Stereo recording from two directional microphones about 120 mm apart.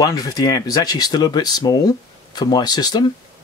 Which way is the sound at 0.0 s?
30° left (ahead or behind).